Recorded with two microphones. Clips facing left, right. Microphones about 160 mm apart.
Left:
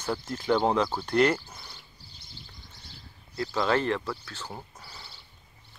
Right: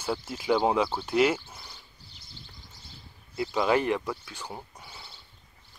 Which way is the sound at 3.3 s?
15° right (ahead or behind).